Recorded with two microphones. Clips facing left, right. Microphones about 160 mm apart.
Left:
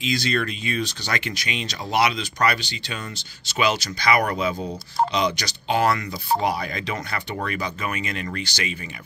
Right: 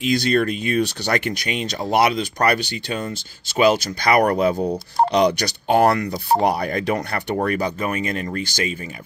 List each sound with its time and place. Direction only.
0.0 s speech: 55° right (ahead or behind)